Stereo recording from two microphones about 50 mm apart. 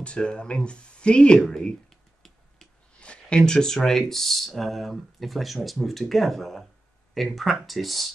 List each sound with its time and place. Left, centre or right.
0.0 s speech: left
1.9 s tick-tock: centre
3.0 s speech: left; by 8.1 s centre